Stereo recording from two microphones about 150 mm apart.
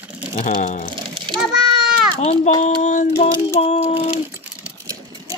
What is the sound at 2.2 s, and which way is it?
Child singing, 50° left (ahead or behind).